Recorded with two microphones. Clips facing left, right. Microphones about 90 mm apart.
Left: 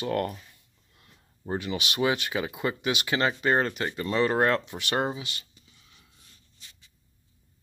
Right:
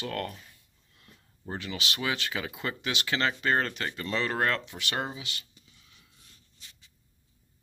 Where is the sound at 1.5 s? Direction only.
15° left (ahead or behind).